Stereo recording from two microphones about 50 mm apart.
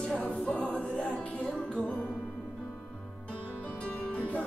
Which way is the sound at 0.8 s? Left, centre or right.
Left.